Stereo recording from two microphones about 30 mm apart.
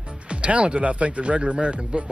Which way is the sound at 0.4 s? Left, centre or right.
Right.